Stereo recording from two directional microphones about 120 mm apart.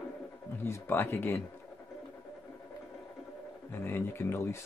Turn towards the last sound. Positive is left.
turn(degrees=20)  # may be behind; listen again after turning